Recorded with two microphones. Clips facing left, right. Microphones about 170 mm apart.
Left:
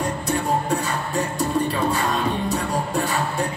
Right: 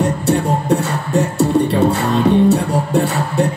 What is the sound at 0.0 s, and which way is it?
Music, 75° right (ahead or behind).